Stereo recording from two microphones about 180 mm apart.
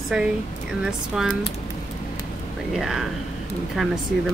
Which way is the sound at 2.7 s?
Centre (ahead or behind).